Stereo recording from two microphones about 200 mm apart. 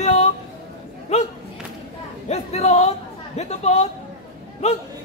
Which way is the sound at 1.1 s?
35° left (ahead or behind).